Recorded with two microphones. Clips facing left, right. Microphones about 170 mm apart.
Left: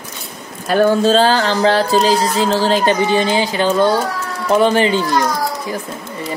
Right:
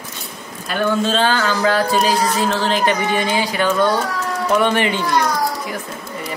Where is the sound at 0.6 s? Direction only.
40° left (ahead or behind).